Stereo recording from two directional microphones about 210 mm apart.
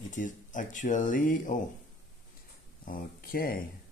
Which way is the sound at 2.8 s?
45° left (ahead or behind).